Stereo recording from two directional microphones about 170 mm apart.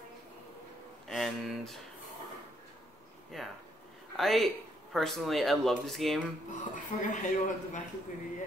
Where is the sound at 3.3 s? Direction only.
Centre (ahead or behind).